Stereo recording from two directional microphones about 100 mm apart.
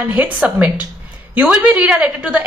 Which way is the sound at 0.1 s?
15° right (ahead or behind).